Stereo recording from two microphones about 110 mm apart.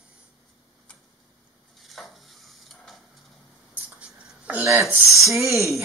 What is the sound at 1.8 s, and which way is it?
Stir, centre (ahead or behind).